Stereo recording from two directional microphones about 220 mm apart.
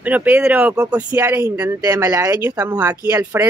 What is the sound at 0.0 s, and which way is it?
Speech, 5° right (ahead or behind).